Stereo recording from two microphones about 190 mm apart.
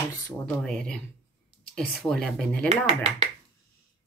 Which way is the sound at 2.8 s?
30° right (ahead or behind).